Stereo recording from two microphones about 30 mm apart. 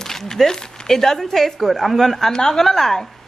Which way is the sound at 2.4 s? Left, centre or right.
Left.